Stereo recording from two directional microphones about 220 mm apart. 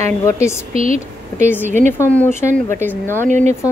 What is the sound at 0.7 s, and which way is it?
Speech, 30° right (ahead or behind).